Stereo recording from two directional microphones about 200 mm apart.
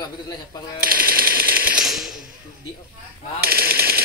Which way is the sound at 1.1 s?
50° right (ahead or behind).